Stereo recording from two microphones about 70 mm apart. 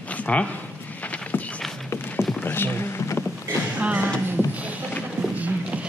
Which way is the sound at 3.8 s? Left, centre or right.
Centre.